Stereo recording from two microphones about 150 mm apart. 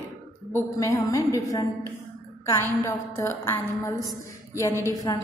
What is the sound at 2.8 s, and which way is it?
A woman's voice, 15° left (ahead or behind).